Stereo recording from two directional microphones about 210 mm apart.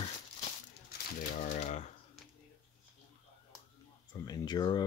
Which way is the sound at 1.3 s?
35° left (ahead or behind).